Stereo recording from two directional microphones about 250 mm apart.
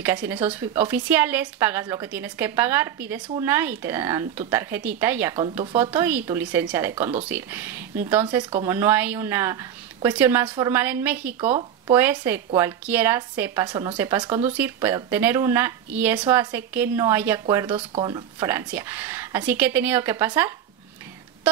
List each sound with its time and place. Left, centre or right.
0.0 s speech: centre
5.9 s speech: centre
8.4 s speech: centre
8.7 s speech: centre